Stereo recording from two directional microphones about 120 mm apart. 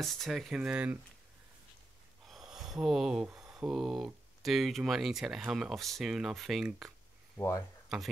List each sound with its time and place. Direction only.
0.0 s speech: centre (ahead or behind)
2.2 s a sound: 5° right (ahead or behind)
3.3 s speech: 5° right (ahead or behind)
7.3 s speech: 25° left (ahead or behind)